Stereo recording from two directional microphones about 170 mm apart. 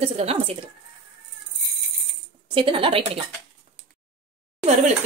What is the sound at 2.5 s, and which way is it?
Speech, 30° right (ahead or behind).